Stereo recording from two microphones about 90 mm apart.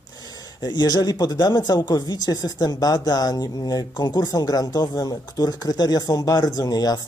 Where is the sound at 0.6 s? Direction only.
50° left (ahead or behind).